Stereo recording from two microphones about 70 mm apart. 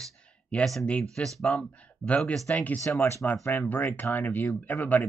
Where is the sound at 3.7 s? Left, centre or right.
Left.